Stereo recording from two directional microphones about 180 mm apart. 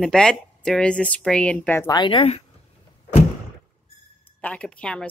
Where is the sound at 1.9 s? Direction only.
25° left (ahead or behind).